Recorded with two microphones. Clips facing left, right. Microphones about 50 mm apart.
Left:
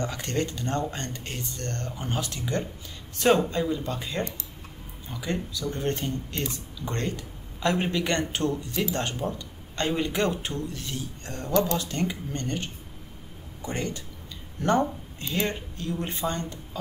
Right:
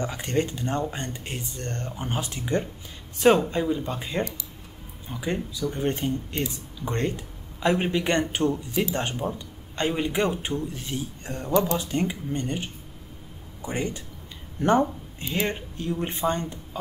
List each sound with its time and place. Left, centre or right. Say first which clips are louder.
0.0 s speech: right 2 dB; centre